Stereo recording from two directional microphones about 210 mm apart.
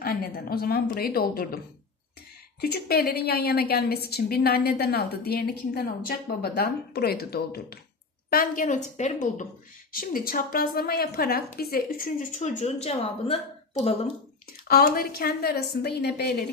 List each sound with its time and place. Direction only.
0.0 s a woman's voice: 45° left (ahead or behind)
2.6 s a woman's voice: 50° left (ahead or behind); by 13.9 s 30° left (ahead or behind)
14.7 s a woman's voice: 45° left (ahead or behind)